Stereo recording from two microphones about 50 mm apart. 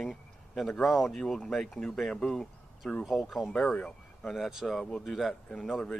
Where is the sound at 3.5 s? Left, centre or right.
Centre.